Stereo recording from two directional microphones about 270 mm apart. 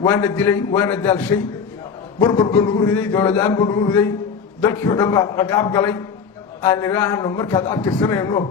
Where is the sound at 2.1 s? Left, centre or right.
Centre.